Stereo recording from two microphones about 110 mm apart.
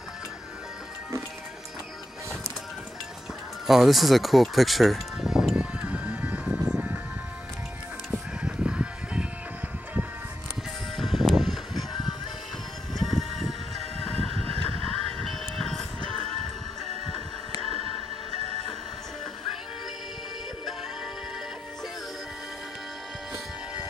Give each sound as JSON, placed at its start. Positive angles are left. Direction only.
{"t": 3.6, "sound": "music", "side_deg": 0}
{"t": 8.1, "sound": "music", "side_deg": -10}
{"t": 11.0, "sound": "music", "side_deg": 0}
{"t": 12.9, "sound": "music", "side_deg": 0}
{"t": 14.0, "sound": "music", "side_deg": 10}